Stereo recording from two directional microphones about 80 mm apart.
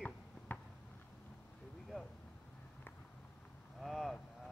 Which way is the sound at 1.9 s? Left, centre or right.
Centre.